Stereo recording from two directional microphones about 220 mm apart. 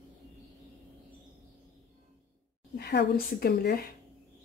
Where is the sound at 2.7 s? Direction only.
50° left (ahead or behind).